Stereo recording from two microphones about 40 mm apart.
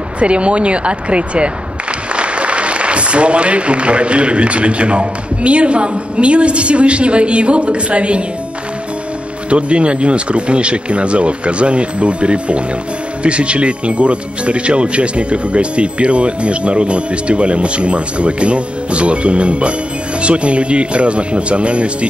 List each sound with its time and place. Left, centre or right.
0.2 s speech: right
9.5 s speech: right